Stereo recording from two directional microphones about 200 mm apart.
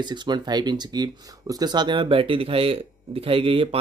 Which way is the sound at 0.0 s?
20° right (ahead or behind).